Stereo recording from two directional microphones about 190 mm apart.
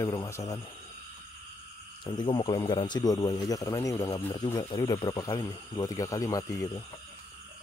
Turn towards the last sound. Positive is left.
turn(degrees=20)  # may be behind; listen again after turning